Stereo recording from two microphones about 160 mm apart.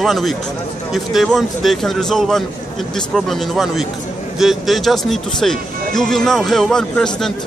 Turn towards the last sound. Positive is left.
turn(degrees=5)  # may be behind; listen again after turning